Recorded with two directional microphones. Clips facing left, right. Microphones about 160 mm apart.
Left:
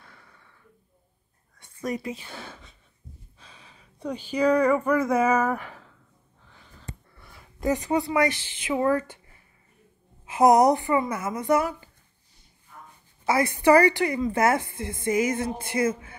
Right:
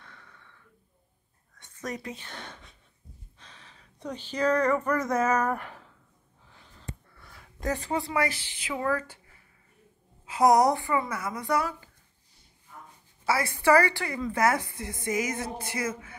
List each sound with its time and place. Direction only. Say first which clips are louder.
0.0 s snort: even; 10° left (ahead or behind)
1.6 s speech: left 6 dB; 10° left (ahead or behind)
6.9 s a sound: even; 10° left (ahead or behind)
8.1 s a woman's voice: left 5 dB; 20° left (ahead or behind)
10.2 s a woman's voice: left 3 dB; 20° left (ahead or behind)
13.2 s a woman's voice: left 4 dB; 20° left (ahead or behind)